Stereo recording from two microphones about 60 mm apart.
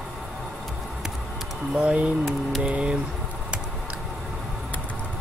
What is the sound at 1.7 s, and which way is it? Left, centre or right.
Speech, right.